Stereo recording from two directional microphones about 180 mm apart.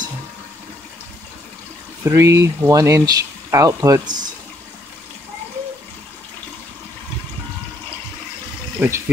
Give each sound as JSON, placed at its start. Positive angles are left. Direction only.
{"t": 2.0, "sound": "speech", "side_deg": -15}
{"t": 8.7, "sound": "speech", "side_deg": -15}